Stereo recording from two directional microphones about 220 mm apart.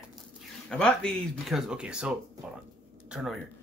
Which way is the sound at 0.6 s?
5° left (ahead or behind).